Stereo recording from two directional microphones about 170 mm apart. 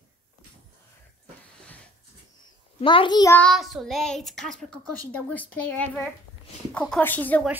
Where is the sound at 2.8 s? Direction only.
30° left (ahead or behind).